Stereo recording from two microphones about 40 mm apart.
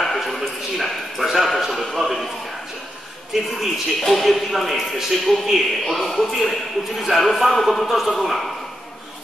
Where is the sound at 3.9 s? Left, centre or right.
Centre.